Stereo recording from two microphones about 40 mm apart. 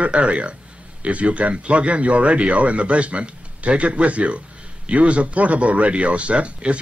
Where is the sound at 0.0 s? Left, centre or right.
Right.